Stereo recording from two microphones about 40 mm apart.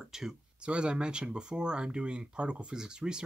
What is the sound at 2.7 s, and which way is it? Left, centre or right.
Speech, centre.